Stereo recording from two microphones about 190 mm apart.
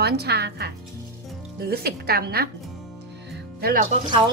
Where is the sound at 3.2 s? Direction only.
55° right (ahead or behind).